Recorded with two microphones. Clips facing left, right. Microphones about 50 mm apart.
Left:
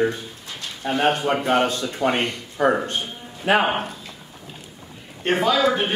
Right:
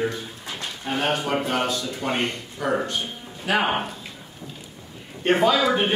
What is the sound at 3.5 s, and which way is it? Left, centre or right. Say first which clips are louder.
Speech: left 4 dB; left.